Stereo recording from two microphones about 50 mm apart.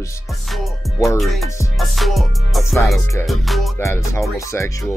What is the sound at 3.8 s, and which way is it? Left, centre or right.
Speech, left.